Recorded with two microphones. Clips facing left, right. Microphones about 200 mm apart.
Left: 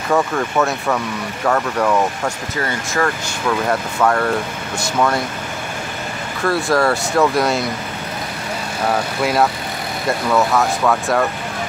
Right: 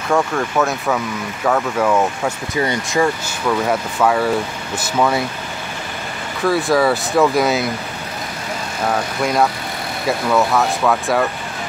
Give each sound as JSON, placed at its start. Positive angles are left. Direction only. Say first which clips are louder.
{"t": 0.1, "sound": "speech", "louder": "even", "side_deg": 0}
{"t": 2.5, "sound": "speech", "louder": "right 7 dB", "side_deg": -15}
{"t": 3.4, "sound": "speech", "louder": "right 1 dB", "side_deg": -5}
{"t": 6.4, "sound": "speech", "louder": "right 1 dB", "side_deg": 0}
{"t": 9.2, "sound": "speech", "louder": "even", "side_deg": 5}